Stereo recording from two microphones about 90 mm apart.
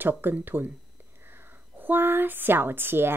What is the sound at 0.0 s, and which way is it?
A woman's voice, 20° right (ahead or behind).